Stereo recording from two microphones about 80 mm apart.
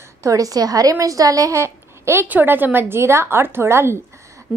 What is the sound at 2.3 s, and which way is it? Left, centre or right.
A woman's voice, right.